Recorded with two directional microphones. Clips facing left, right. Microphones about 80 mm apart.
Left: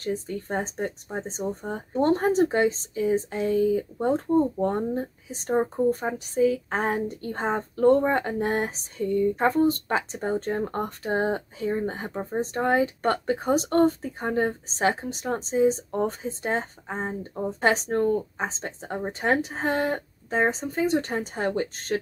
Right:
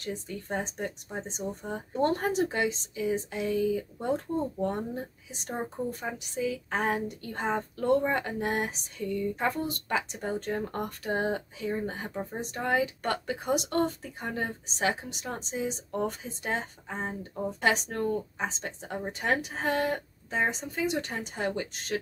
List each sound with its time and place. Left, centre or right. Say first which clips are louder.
0.0 s speech: left 7 dB; left